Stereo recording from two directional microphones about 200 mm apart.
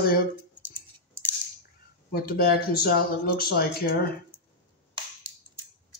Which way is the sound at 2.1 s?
50° left (ahead or behind).